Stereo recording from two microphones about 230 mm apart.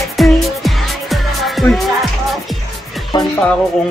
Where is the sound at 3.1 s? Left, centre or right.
Centre.